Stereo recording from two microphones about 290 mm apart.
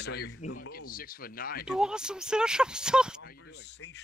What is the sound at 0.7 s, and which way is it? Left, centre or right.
Speech, left.